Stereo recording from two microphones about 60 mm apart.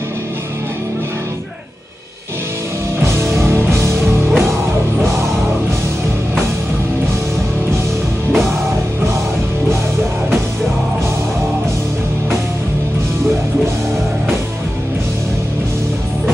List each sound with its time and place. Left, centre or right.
3.0 s music: right
4.0 s music: centre
8.3 s music: centre